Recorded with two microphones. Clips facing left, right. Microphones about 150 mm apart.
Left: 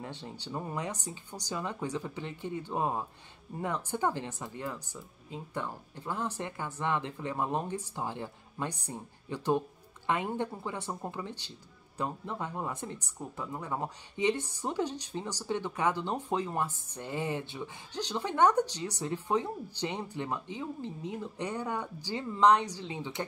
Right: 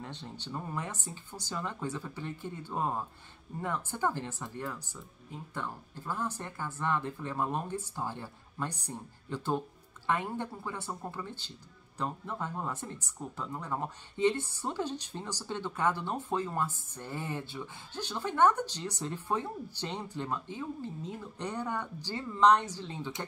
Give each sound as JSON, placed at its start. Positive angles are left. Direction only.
{"t": 0.0, "sound": "speech", "side_deg": 10}